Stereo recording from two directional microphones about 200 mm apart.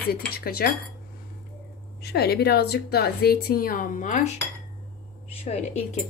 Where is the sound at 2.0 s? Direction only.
55° left (ahead or behind); by 4.3 s 40° left (ahead or behind).